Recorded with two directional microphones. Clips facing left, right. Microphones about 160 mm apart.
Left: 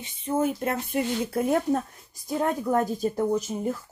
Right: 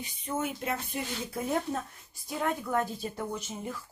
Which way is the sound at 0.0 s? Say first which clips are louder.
Left 7 dB; 30° left (ahead or behind).